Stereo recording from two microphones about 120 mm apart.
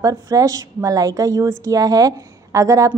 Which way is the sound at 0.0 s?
30° right (ahead or behind).